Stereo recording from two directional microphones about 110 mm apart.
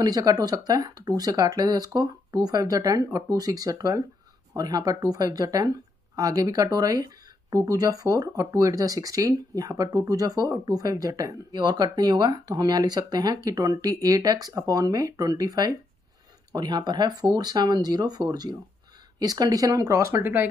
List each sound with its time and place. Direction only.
0.0 s speech: 35° right (ahead or behind); by 20.4 s 20° right (ahead or behind)